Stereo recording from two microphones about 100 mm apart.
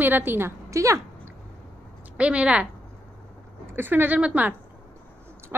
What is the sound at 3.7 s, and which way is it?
Speech, 20° right (ahead or behind).